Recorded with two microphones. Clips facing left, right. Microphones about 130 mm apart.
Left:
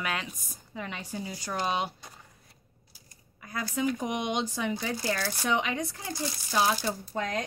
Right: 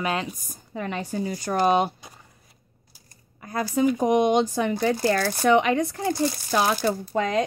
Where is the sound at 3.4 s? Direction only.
45° right (ahead or behind).